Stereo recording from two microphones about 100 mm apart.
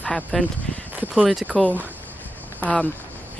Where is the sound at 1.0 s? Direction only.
10° right (ahead or behind).